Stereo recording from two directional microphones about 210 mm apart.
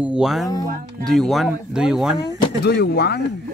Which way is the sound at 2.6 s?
50° left (ahead or behind).